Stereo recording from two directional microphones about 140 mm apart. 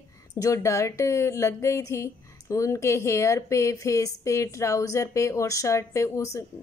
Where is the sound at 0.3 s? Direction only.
25° left (ahead or behind).